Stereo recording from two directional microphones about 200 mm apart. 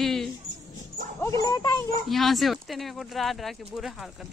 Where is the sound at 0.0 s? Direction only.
Centre (ahead or behind).